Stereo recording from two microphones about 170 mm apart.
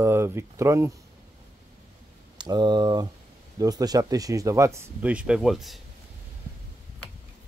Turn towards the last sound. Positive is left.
turn(degrees=0)  # may be behind; listen again after turning